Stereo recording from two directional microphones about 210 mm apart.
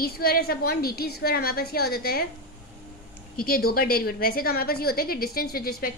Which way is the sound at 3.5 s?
45° left (ahead or behind).